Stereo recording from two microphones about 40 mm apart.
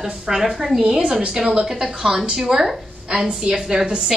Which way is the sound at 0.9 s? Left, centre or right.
Centre.